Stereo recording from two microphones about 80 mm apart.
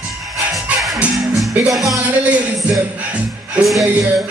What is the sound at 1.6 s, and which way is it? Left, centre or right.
Music, centre.